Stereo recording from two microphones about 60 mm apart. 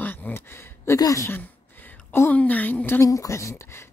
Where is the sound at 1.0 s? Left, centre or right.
Left.